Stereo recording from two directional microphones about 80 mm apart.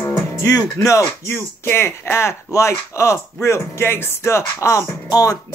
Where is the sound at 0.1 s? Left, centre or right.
Left.